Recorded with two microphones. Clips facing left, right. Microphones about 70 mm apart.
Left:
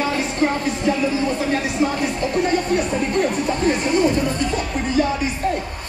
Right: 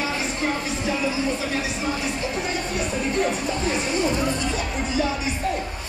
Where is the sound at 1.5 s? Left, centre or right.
Left.